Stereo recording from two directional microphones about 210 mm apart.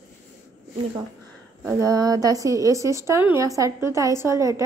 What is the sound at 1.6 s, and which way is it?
A woman's voice, 15° right (ahead or behind).